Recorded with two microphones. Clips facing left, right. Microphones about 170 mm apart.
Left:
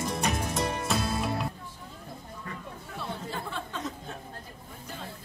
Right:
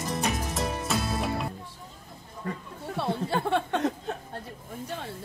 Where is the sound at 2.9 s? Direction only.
70° right (ahead or behind).